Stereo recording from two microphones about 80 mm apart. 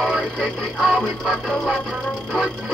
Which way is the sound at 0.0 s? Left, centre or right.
Centre.